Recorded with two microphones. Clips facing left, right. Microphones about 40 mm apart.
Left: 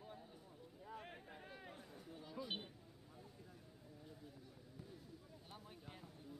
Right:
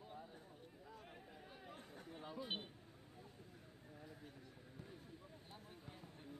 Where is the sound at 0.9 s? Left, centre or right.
Left.